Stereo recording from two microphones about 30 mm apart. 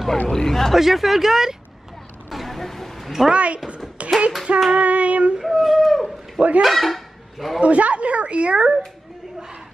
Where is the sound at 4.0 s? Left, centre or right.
Right.